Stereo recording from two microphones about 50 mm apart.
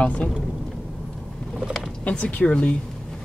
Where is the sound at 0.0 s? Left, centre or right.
Left.